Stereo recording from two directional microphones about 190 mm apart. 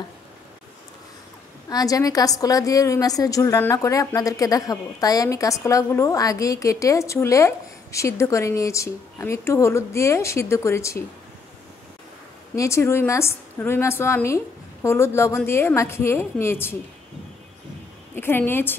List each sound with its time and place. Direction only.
1.7 s a woman's voice: 20° left (ahead or behind)
12.5 s a woman's voice: 15° left (ahead or behind)
18.1 s a woman's voice: 10° left (ahead or behind)